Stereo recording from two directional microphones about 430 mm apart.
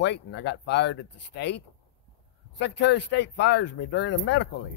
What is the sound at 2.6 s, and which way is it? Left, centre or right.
Speech, left.